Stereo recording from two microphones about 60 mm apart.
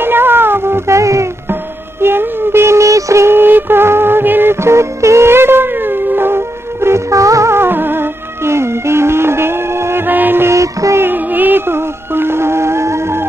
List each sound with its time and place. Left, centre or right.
0.0 s a sound: right
1.5 s music: right
3.3 s music: right
7.1 s music: right
7.5 s music: right
10.0 s music: right
10.5 s music: right
11.0 s music: right